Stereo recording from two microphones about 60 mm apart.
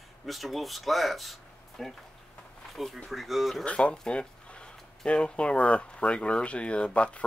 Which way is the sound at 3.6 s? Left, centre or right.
Centre.